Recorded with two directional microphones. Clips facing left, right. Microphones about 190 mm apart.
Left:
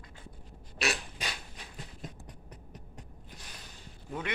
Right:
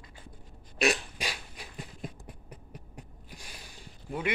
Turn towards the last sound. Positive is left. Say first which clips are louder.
# right 4 dB
turn(degrees=-10)  # may be behind; listen again after turning